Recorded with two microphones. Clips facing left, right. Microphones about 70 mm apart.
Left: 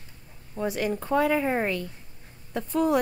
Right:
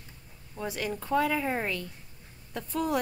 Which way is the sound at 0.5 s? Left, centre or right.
Left.